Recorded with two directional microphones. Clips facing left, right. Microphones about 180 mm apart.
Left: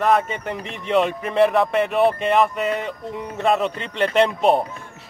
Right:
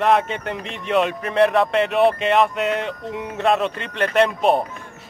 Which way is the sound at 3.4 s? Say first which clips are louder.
Even; 15° left (ahead or behind).